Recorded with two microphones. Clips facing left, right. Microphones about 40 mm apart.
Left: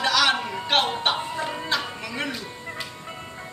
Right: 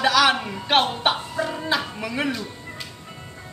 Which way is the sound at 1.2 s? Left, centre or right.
Centre.